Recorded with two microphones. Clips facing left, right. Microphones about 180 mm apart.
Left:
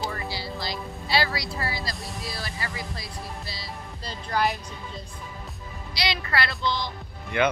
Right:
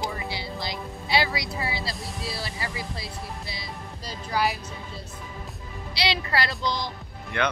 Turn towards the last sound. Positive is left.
turn(degrees=5)  # may be behind; listen again after turning